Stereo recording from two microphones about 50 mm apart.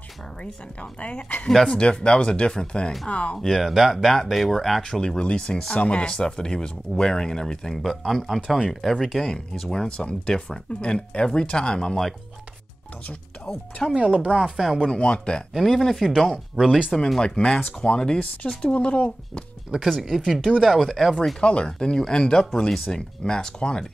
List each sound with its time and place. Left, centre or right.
1.0 s speech: left
3.3 s speech: centre
5.1 s speech: centre
7.8 s speech: centre
13.5 s speech: centre
13.8 s speech: centre
14.6 s speech: centre
14.9 s speech: left
15.5 s speech: centre
16.5 s speech: centre
17.2 s speech: centre
19.7 s speech: right
20.2 s speech: centre
21.4 s speech: centre